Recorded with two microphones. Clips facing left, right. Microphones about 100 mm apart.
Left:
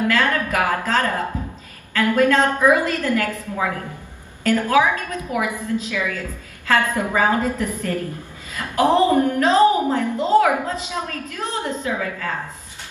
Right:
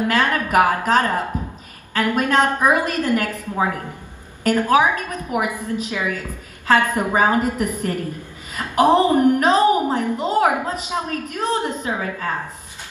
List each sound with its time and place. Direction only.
0.0 s a woman's voice: 20° right (ahead or behind)